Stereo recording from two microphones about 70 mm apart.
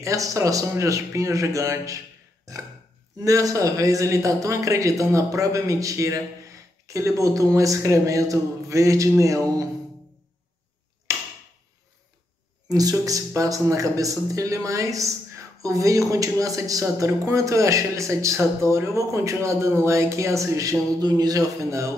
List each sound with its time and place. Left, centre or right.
0.0 s speech: right
2.5 s chopping: right
3.2 s speech: right
12.6 s speech: right
21.0 s speech: right